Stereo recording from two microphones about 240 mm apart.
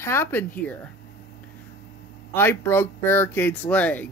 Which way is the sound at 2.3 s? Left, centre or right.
Centre.